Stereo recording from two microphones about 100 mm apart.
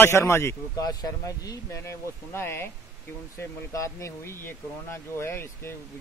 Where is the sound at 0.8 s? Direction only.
40° left (ahead or behind).